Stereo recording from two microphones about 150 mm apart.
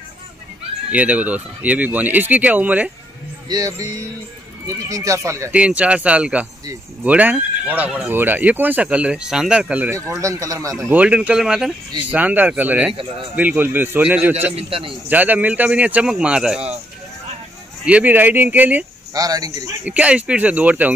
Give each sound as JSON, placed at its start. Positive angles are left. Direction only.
{"t": 0.9, "sound": "speech", "side_deg": -10}
{"t": 3.4, "sound": "speech", "side_deg": -25}
{"t": 5.5, "sound": "speech", "side_deg": -10}
{"t": 10.9, "sound": "speech", "side_deg": -10}
{"t": 14.5, "sound": "a man's voice", "side_deg": -40}
{"t": 15.0, "sound": "speech", "side_deg": -10}
{"t": 17.8, "sound": "speech", "side_deg": -10}
{"t": 19.1, "sound": "speech", "side_deg": -25}
{"t": 19.8, "sound": "speech", "side_deg": -10}